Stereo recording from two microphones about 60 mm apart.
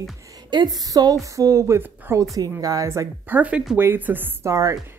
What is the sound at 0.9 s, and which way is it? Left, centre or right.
Speech, right.